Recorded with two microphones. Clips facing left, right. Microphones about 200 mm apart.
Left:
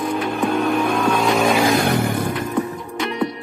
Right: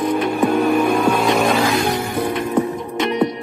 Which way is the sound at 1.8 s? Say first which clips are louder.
Left 1 dB; 60° left (ahead or behind).